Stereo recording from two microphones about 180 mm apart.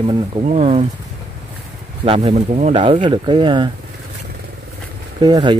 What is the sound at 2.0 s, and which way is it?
Speech, 35° right (ahead or behind).